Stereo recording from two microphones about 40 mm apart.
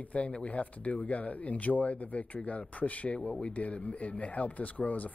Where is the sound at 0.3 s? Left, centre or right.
Left.